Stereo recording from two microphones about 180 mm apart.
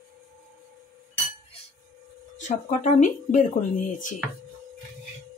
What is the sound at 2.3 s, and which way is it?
Speech, 45° left (ahead or behind).